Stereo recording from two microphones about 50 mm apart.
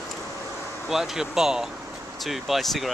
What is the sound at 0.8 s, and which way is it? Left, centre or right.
Speech, centre.